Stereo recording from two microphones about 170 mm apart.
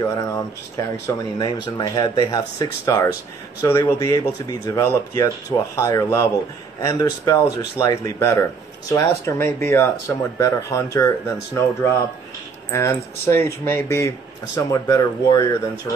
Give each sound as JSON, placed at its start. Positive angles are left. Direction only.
{"t": 0.0, "sound": "speech", "side_deg": 20}
{"t": 12.7, "sound": "speech", "side_deg": 15}